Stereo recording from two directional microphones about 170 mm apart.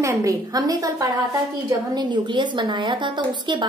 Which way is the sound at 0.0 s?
20° right (ahead or behind).